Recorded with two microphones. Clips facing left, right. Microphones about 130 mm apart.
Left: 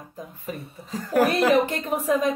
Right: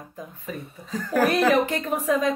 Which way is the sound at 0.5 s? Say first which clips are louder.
Even; 30° left (ahead or behind).